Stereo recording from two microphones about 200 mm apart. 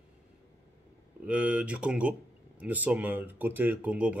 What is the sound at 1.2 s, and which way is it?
Speech, 5° right (ahead or behind).